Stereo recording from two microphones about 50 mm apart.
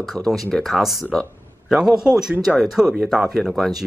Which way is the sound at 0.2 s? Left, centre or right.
Left.